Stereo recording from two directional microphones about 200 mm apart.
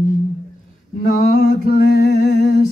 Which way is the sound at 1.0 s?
45° left (ahead or behind).